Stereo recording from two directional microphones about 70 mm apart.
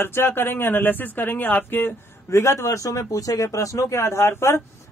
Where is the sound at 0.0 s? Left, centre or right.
Left.